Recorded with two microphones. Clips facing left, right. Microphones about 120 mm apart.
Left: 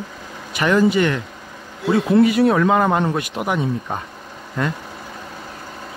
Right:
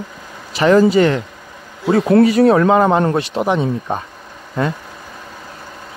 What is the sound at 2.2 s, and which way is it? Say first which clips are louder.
Speech: right 4 dB; 35° right (ahead or behind).